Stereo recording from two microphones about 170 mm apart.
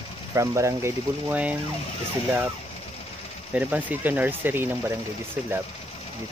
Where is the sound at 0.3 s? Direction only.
15° right (ahead or behind).